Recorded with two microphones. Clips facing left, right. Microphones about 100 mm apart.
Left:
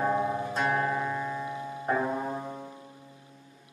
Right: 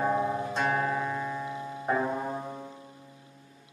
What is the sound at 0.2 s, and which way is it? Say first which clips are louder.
Music: even; 5° right (ahead or behind).